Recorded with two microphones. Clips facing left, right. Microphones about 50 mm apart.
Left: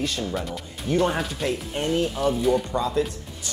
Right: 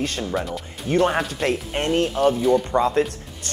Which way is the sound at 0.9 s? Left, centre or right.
Right.